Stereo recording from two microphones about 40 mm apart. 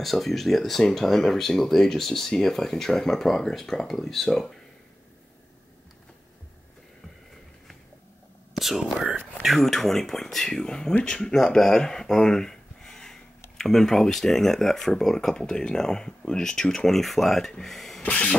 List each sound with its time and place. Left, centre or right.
0.0 s speech: centre
8.5 s whispering: centre
9.6 s speech: centre
18.0 s a sound: left